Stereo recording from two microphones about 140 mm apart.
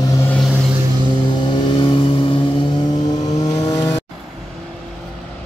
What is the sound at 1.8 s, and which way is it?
Vehicle, 40° left (ahead or behind).